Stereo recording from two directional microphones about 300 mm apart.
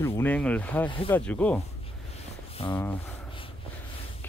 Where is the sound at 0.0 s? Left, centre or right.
Centre.